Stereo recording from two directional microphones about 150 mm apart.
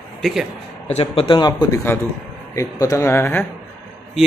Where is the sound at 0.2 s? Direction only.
Centre (ahead or behind).